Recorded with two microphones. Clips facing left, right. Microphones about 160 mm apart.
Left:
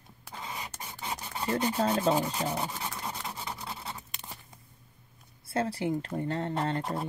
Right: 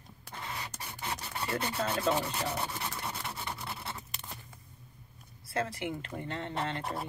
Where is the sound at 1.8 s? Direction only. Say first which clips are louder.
Left 3 dB; 30° left (ahead or behind).